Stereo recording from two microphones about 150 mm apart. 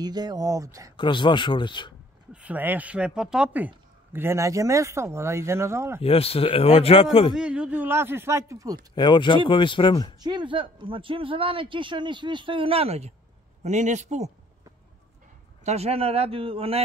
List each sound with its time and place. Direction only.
0.0 s speech: 25° right (ahead or behind)
0.9 s speech: 30° left (ahead or behind)
2.3 s speech: 10° right (ahead or behind)
6.0 s speech: 40° left (ahead or behind)
7.3 s speech: 5° right (ahead or behind)
8.9 s speech: 30° left (ahead or behind)
10.2 s a man's voice: 30° right (ahead or behind); by 14.3 s 50° right (ahead or behind)
15.6 s speech: 45° right (ahead or behind)